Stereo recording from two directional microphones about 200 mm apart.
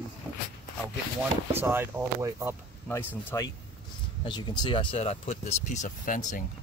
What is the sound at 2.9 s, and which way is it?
Speech, 10° left (ahead or behind).